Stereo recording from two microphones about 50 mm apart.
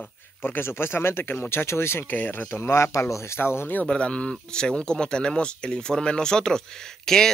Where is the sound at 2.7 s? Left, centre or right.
Left.